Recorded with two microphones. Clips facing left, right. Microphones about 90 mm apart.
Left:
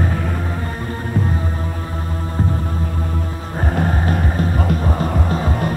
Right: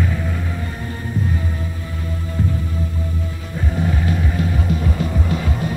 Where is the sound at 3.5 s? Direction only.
50° left (ahead or behind).